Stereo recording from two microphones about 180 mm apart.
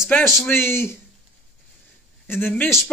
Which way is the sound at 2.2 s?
10° left (ahead or behind).